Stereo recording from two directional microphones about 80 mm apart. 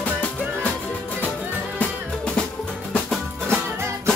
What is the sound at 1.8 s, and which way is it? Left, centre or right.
Music, centre.